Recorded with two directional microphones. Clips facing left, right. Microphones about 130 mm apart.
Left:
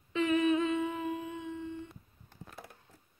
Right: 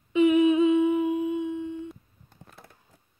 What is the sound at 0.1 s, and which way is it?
Humming, 15° right (ahead or behind).